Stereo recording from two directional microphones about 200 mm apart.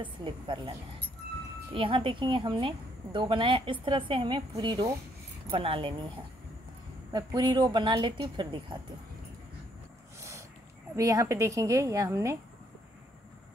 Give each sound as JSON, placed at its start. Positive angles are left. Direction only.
{"t": 0.0, "sound": "a woman's voice", "side_deg": -25}
{"t": 11.0, "sound": "a woman's voice", "side_deg": -15}